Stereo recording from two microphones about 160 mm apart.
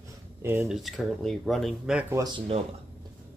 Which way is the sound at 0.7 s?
Centre (ahead or behind).